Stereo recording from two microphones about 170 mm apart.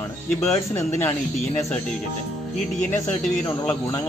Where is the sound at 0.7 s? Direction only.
15° left (ahead or behind).